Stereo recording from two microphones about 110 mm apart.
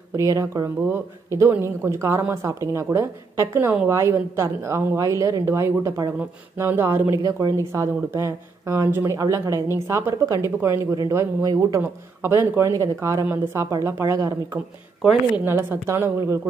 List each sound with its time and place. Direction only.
0.1 s speech: 30° right (ahead or behind)
7.2 s speech: 35° right (ahead or behind)
15.0 s speech: 5° right (ahead or behind)
15.4 s speech: 20° right (ahead or behind)